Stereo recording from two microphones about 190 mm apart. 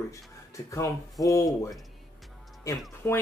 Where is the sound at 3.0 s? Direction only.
10° left (ahead or behind).